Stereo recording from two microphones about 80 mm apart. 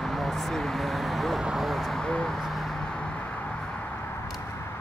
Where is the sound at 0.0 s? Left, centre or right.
Centre.